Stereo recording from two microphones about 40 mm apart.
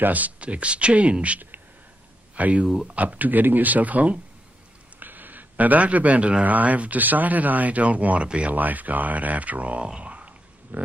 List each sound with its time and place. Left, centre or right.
0.0 s speech: right
2.6 s speech: centre
2.9 s speech: right
5.0 s a sound: right
6.4 s speech: right
9.9 s grunt: right
10.7 s speech: right